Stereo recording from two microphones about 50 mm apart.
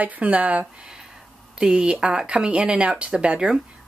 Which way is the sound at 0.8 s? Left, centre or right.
Centre.